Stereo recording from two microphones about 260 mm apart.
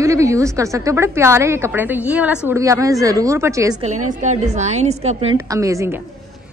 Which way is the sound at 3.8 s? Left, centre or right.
Right.